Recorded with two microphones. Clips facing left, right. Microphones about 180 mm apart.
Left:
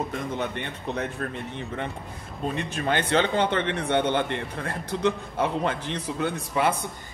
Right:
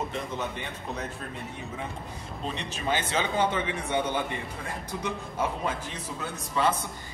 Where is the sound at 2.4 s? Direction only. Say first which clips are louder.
Left 5 dB; 55° left (ahead or behind).